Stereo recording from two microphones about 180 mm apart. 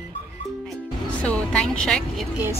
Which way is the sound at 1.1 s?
5° left (ahead or behind).